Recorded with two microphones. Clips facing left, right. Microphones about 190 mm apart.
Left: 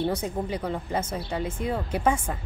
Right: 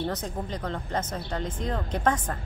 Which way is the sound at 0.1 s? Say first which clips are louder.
Left 4 dB; 10° left (ahead or behind).